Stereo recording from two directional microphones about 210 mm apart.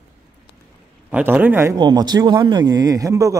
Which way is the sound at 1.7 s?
20° right (ahead or behind).